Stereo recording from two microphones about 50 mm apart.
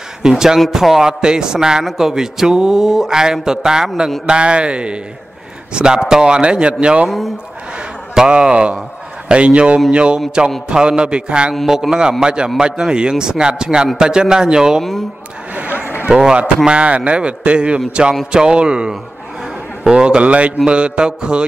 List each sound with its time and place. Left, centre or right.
0.2 s speech: centre
4.3 s mantra: right
8.1 s speech: centre
9.3 s mantra: right
11.6 s speech: centre
15.5 s a sound: right
16.1 s speech: centre
16.6 s mantra: right
18.3 s speech: centre
19.8 s mantra: centre